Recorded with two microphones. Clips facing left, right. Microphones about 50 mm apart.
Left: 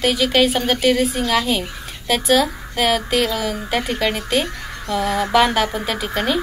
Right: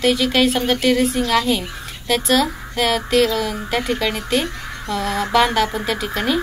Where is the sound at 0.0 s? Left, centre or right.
Centre.